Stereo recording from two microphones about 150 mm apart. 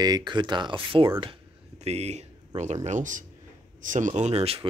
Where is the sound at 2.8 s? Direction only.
55° right (ahead or behind); by 4.7 s 40° right (ahead or behind).